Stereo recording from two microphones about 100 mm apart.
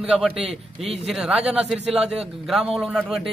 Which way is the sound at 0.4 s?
90° right.